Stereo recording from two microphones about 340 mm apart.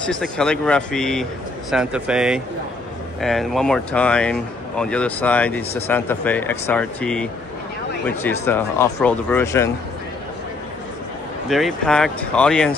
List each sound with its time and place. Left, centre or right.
0.0 s speech: centre
11.4 s speech: centre